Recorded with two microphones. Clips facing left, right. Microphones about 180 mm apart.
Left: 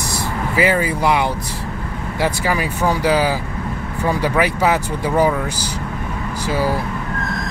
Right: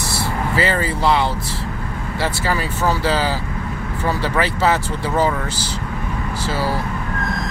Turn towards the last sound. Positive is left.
turn(degrees=15)  # may be behind; listen again after turning